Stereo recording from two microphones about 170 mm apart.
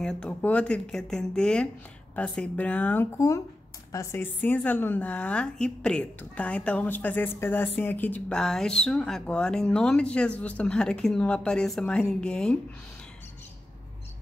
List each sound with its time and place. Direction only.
0.0 s a woman's voice: 5° left (ahead or behind)